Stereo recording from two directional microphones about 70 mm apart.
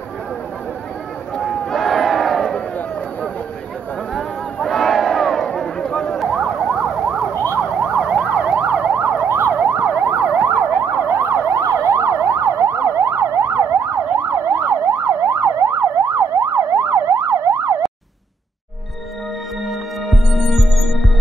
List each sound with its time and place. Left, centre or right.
1.4 s battle cry: centre
4.1 s crowd: centre
5.5 s a sound: centre
6.3 s emergency vehicle: centre
7.9 s emergency vehicle: centre; by 17.7 s right
20.1 s music: centre